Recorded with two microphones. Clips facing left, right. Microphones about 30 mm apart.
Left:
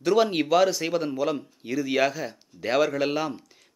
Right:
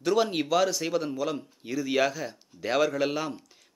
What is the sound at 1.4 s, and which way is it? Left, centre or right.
Speech, centre.